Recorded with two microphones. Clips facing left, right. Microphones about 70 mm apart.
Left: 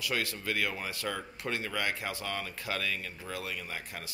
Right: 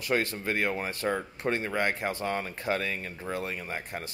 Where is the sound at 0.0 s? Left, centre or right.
Right.